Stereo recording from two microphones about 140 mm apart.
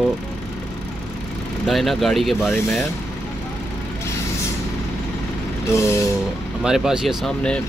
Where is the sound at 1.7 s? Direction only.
Centre (ahead or behind).